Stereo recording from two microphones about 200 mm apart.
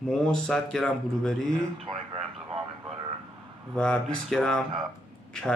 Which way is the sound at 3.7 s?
5° left (ahead or behind).